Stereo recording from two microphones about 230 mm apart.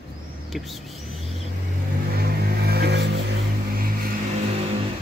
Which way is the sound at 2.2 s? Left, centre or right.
Right.